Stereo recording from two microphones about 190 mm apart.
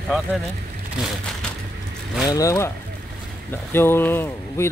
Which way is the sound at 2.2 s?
15° left (ahead or behind).